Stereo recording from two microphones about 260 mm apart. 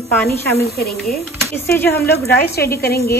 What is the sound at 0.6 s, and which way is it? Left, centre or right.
Speech, left.